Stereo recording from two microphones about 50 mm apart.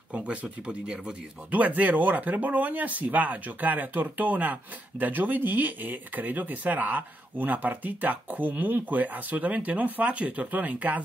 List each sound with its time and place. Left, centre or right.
0.1 s speech: right
1.5 s speech: right